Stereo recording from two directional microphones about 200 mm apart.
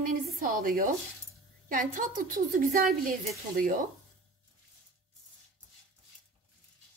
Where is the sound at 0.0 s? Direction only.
45° right (ahead or behind).